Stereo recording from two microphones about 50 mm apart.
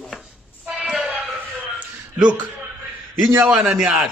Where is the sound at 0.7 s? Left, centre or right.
Centre.